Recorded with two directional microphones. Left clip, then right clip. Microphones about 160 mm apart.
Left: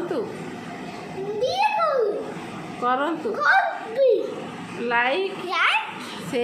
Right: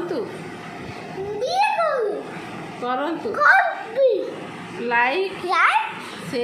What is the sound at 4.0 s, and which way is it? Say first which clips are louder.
Speech: right 1 dB; 5° right (ahead or behind).